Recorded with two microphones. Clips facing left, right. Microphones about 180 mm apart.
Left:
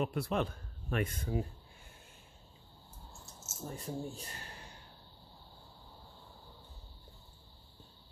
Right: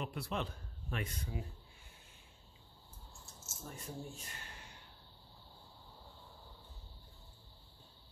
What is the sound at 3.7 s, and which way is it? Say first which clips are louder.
Speech: left 6 dB; 35° left (ahead or behind).